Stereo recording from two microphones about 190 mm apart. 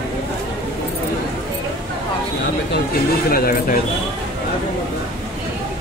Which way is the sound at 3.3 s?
50° left (ahead or behind).